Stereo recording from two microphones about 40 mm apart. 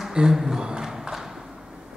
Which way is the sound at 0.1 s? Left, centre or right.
Centre.